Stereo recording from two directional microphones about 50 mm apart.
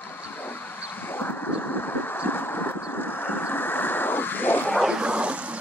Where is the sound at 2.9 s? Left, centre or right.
Left.